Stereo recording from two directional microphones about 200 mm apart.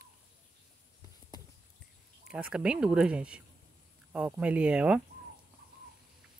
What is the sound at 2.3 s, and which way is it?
Speech, 5° right (ahead or behind).